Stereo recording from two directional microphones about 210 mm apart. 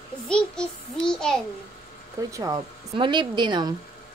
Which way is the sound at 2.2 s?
15° right (ahead or behind).